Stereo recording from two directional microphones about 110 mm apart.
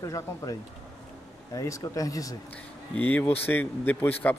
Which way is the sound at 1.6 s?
30° left (ahead or behind).